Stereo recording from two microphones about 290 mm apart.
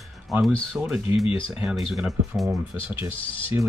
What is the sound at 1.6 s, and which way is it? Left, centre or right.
Speech, centre.